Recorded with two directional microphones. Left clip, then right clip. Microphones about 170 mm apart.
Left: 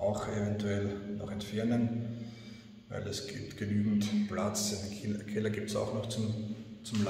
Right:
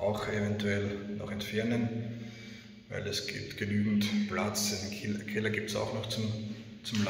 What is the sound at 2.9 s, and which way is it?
A man's voice, 10° left (ahead or behind).